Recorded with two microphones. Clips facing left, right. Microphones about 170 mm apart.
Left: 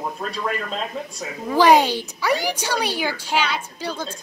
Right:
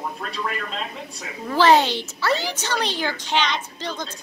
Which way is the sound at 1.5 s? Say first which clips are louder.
Left 2 dB; 10° left (ahead or behind).